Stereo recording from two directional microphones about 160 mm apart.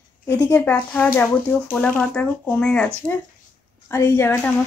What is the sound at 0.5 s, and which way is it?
A woman's voice, 10° left (ahead or behind).